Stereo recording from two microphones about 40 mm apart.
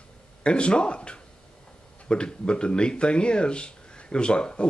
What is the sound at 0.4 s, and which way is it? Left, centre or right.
Speech, left.